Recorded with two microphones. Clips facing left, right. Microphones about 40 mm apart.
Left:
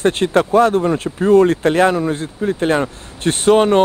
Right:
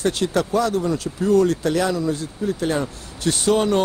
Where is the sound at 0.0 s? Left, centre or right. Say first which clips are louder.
Left 6 dB; left.